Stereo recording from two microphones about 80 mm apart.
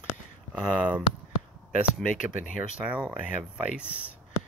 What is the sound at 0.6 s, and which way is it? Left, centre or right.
Speech, centre.